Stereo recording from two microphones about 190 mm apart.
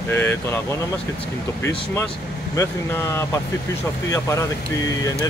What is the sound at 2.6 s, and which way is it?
Speech, 15° left (ahead or behind).